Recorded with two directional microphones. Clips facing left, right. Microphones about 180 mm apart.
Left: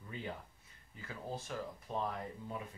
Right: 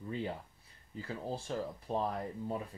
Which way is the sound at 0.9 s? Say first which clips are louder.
Right 5 dB; 30° right (ahead or behind).